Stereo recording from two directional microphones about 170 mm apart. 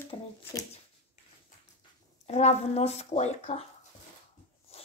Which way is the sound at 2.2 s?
40° left (ahead or behind).